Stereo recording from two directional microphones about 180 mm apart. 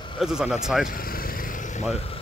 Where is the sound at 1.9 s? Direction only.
35° left (ahead or behind).